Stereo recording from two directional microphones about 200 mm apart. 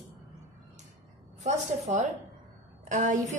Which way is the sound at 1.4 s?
35° right (ahead or behind).